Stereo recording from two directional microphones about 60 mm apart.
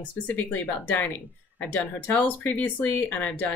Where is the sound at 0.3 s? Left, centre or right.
Left.